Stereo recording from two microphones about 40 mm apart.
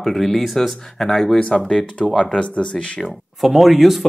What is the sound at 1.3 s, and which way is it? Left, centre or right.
Speech, left.